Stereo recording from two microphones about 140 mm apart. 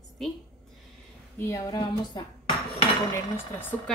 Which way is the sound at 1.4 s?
25° left (ahead or behind).